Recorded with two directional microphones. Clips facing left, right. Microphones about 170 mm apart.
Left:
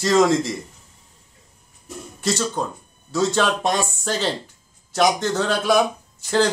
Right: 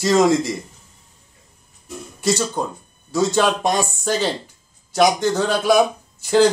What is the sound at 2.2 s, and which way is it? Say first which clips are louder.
A man's voice: right 2 dB; centre (ahead or behind).